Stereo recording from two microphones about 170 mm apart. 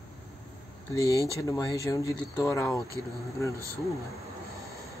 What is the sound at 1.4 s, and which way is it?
Speech, 20° left (ahead or behind).